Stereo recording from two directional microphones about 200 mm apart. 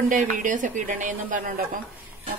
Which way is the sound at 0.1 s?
40° right (ahead or behind).